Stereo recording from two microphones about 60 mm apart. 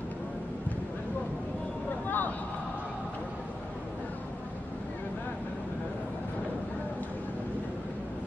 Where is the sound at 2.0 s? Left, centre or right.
Left.